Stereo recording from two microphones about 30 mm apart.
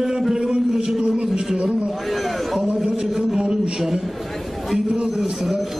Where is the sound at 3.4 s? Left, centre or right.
Right.